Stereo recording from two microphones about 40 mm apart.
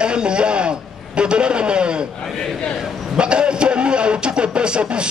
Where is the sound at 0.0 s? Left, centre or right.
Right.